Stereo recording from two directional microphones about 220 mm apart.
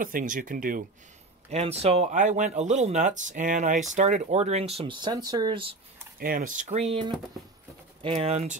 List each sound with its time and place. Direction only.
0.0 s speech: 40° right (ahead or behind)
1.5 s speech: 30° right (ahead or behind)
6.1 s speech: 40° right (ahead or behind)